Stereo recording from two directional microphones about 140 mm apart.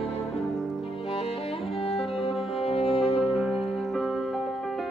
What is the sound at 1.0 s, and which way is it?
Music, 45° left (ahead or behind).